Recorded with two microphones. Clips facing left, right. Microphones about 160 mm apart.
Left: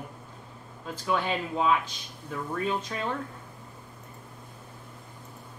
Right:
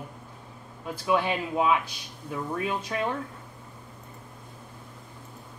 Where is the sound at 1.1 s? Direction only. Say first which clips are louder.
Right 3 dB; 15° right (ahead or behind).